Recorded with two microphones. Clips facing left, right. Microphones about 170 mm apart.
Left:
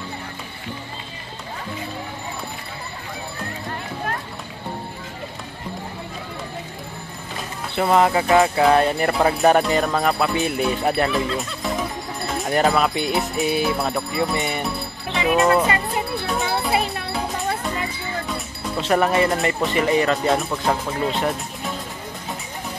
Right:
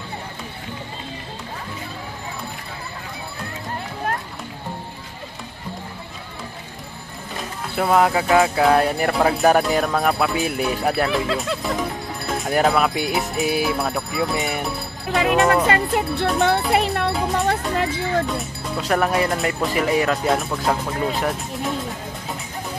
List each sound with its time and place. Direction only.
7.7 s speech: centre (ahead or behind)
12.4 s speech: centre (ahead or behind)
15.7 s speech: 65° right (ahead or behind)
17.5 s music: 70° right (ahead or behind)
18.3 s speech: centre (ahead or behind)